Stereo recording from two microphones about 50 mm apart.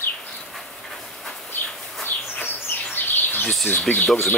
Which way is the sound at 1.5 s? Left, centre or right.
Left.